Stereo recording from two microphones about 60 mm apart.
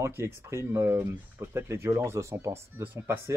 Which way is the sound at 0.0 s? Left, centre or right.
Right.